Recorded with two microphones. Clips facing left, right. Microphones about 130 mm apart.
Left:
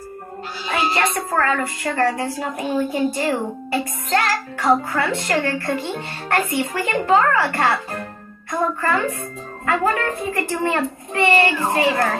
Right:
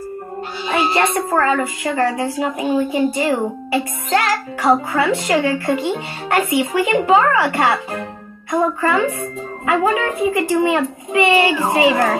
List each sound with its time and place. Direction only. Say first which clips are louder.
0.8 s a woman's voice: right 3 dB; 30° right (ahead or behind)
1.4 s a woman's voice: right 3 dB; 5° right (ahead or behind)
8.5 s a child's voice: right 4 dB; 10° right (ahead or behind)